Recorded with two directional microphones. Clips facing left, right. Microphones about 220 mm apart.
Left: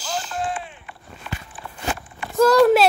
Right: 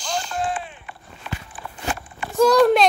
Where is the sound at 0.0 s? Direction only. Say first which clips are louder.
Right 1 dB; 5° left (ahead or behind).